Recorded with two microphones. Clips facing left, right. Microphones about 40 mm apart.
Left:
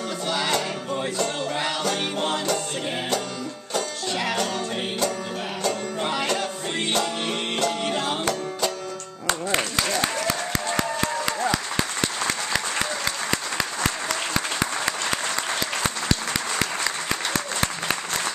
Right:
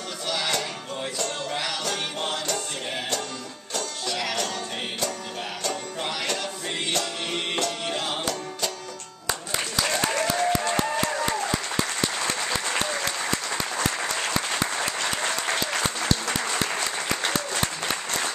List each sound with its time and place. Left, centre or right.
1.1 s music: centre
4.1 s music: left
5.6 s music: centre
7.5 s music: centre
10.5 s music: left